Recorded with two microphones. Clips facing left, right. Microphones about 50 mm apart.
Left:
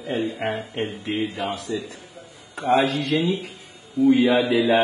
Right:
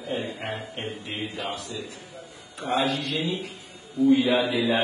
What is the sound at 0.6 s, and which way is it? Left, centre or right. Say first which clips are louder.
Music: left 7 dB; left.